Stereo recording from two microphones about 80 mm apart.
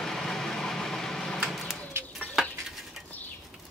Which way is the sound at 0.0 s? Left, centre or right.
Centre.